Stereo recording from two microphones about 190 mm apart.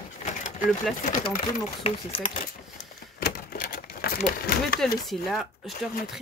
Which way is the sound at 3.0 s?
50° left (ahead or behind).